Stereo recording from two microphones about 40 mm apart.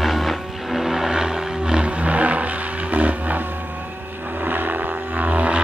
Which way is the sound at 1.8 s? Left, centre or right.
Right.